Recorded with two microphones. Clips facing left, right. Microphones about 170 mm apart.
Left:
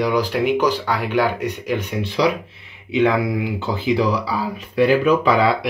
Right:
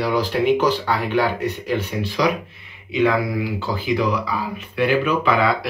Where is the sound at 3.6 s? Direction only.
25° left (ahead or behind).